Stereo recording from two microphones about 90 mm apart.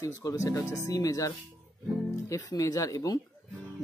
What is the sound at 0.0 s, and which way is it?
Speech, 40° left (ahead or behind).